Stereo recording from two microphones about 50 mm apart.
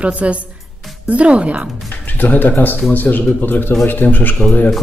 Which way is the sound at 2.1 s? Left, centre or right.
Left.